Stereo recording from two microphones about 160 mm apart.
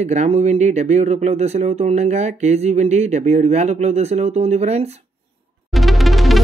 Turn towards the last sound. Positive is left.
turn(degrees=0)  # may be behind; listen again after turning